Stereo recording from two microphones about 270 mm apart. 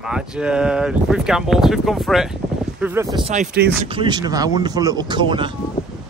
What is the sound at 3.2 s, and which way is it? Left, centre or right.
Speech, right.